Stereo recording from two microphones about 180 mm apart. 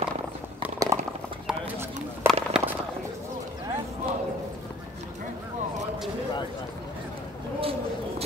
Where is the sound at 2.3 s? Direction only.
5° right (ahead or behind).